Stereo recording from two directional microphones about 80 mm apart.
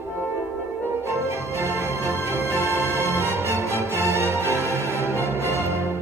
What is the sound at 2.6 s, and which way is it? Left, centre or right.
Music, left.